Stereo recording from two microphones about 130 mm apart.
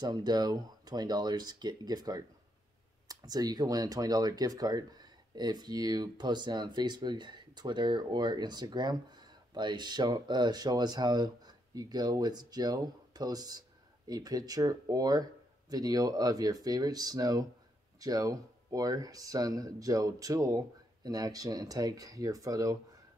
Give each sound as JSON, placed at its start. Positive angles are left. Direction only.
{"t": 0.0, "sound": "speech", "side_deg": -30}